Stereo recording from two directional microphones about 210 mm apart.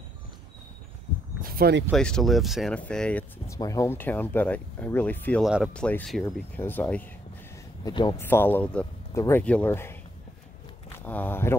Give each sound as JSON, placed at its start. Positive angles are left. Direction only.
{"t": 1.4, "sound": "a sound", "side_deg": -45}
{"t": 1.9, "sound": "speech", "side_deg": 5}
{"t": 7.8, "sound": "speech", "side_deg": 20}
{"t": 8.2, "sound": "speech", "side_deg": 10}
{"t": 11.1, "sound": "speech", "side_deg": 10}